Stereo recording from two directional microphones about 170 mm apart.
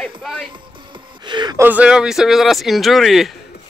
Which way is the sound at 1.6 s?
10° right (ahead or behind).